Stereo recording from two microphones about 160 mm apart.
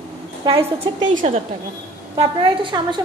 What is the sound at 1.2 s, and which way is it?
Speech, 45° right (ahead or behind).